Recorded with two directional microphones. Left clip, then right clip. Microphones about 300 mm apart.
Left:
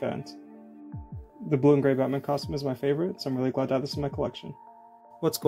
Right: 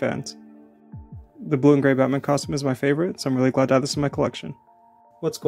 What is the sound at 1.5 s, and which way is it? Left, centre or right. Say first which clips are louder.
Speech: right 4 dB; centre.